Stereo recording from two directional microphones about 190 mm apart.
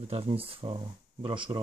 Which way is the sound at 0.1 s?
30° right (ahead or behind).